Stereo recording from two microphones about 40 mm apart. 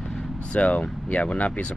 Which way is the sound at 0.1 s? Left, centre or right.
Left.